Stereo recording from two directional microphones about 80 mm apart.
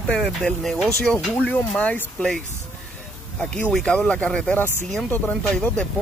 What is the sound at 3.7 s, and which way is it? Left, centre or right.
Speech, centre.